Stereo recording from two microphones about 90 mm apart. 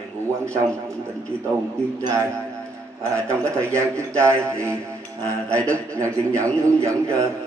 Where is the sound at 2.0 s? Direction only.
35° right (ahead or behind).